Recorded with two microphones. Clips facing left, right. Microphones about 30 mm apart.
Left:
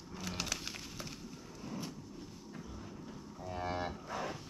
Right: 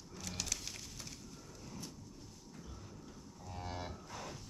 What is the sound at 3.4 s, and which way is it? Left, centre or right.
Moo, left.